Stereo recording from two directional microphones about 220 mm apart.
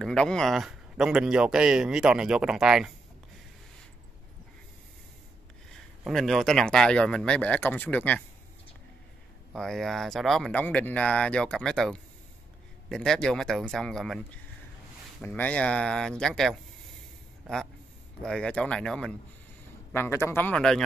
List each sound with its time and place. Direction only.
0.0 s speech: 5° left (ahead or behind)
5.7 s speech: centre (ahead or behind)
9.5 s speech: centre (ahead or behind)
18.2 s speech: 5° left (ahead or behind)